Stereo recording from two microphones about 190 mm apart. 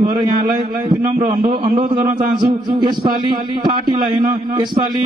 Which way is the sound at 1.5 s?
25° right (ahead or behind).